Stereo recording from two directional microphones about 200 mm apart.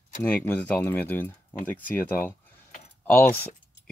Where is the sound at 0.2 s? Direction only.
10° left (ahead or behind).